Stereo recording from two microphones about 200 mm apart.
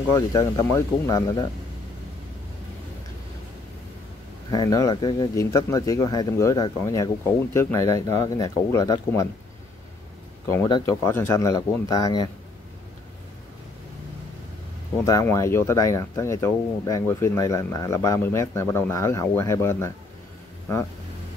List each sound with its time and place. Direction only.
0.1 s speech: 15° left (ahead or behind)
4.5 s speech: 20° left (ahead or behind)
10.7 s speech: 15° left (ahead or behind)
15.0 s speech: 15° left (ahead or behind)